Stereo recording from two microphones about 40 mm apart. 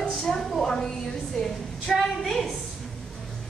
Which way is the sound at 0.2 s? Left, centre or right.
Centre.